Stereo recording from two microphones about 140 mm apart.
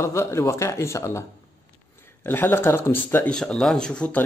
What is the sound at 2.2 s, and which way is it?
Speech, 15° left (ahead or behind).